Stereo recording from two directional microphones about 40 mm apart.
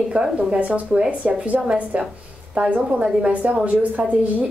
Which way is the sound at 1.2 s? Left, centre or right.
Right.